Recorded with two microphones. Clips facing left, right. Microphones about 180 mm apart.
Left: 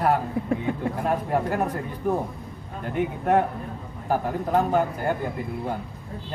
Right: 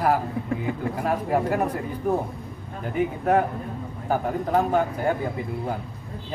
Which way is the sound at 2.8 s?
Centre (ahead or behind).